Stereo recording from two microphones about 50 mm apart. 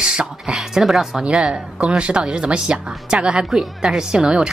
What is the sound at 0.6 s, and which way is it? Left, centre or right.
Speech, centre.